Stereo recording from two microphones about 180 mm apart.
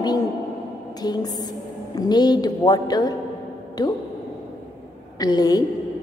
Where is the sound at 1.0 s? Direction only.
20° left (ahead or behind).